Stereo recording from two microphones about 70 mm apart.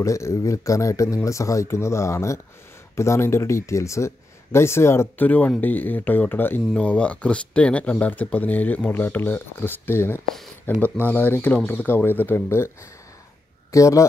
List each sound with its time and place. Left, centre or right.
0.0 s speech: left
5.2 s speech: left
6.7 s a man's voice: centre; by 14.0 s left